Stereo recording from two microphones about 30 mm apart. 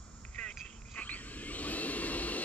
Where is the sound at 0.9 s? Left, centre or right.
Left.